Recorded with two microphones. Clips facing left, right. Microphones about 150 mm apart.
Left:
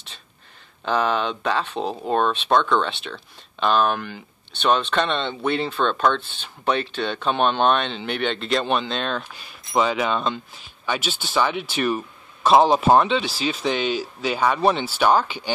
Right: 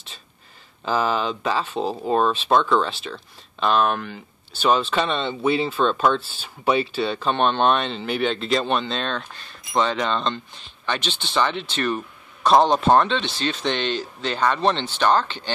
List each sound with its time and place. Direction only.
0.8 s speech: centre (ahead or behind)